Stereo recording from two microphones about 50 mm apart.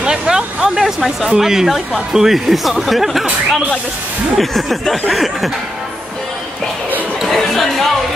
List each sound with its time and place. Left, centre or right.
0.0 s speech: centre
4.4 s speech: centre
7.2 s chatter: centre